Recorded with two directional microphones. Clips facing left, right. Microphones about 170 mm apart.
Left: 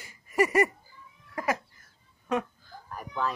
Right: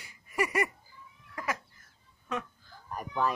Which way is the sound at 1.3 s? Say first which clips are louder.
Left 6 dB; 55° left (ahead or behind).